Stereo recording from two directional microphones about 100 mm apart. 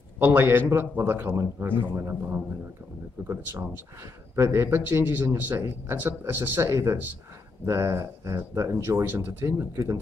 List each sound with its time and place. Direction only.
0.2 s speech: 20° right (ahead or behind)